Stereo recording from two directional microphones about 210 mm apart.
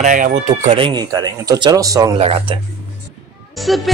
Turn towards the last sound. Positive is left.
turn(degrees=0)  # may be behind; listen again after turning